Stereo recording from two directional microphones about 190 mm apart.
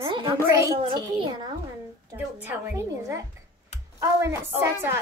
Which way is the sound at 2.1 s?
10° right (ahead or behind).